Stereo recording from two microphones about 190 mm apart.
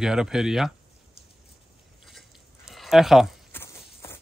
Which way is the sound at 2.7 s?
Centre (ahead or behind).